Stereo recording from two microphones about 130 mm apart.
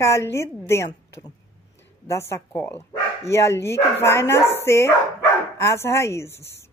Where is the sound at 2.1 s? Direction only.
20° left (ahead or behind).